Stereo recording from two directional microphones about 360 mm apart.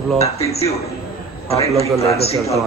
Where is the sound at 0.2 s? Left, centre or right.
Centre.